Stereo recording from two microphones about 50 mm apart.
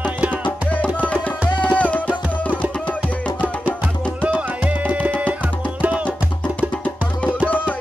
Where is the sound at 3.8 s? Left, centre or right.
Right.